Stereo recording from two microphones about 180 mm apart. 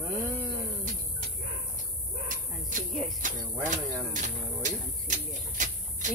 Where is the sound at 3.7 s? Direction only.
45° right (ahead or behind).